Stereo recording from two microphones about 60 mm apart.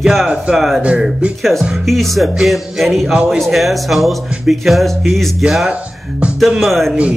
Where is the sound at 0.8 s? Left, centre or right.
Centre.